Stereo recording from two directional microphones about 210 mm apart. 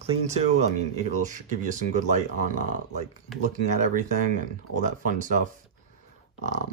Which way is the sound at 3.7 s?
35° right (ahead or behind).